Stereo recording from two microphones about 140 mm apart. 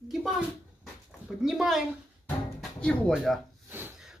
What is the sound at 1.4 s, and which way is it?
Speech, 5° right (ahead or behind).